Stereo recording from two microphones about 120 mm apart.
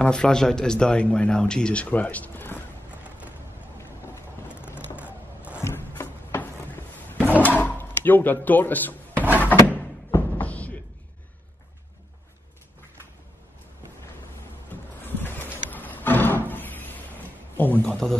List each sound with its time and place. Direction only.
0.0 s speech: 5° left (ahead or behind)
5.6 s a sound: 20° left (ahead or behind)
9.8 s music: 15° left (ahead or behind)
14.7 s music: 15° left (ahead or behind)
17.6 s a man's voice: 15° left (ahead or behind)